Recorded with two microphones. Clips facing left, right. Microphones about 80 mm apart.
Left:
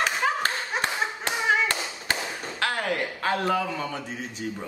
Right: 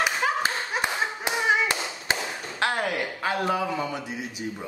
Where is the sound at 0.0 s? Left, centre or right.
Centre.